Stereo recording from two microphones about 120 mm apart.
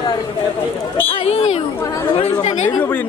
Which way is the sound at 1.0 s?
55° left (ahead or behind).